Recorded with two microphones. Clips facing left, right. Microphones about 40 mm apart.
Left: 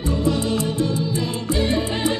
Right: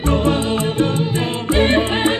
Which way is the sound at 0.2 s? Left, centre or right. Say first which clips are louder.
Right 3 dB; right.